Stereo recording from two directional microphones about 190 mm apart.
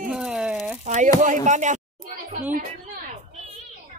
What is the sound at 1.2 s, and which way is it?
Speech, 40° right (ahead or behind).